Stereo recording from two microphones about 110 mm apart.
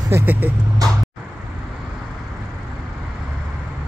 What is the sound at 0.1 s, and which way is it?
Speech, 20° right (ahead or behind).